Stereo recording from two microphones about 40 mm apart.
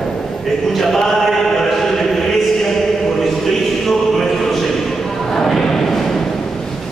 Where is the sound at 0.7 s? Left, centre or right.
Centre.